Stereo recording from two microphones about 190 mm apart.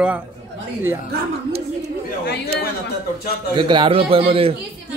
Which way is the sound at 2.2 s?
55° left (ahead or behind).